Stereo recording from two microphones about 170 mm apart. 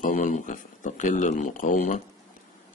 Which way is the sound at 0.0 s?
50° left (ahead or behind).